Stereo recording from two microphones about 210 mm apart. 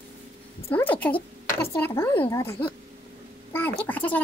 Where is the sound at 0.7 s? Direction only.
10° left (ahead or behind).